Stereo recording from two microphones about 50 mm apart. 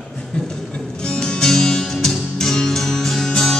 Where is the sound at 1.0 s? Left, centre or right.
Centre.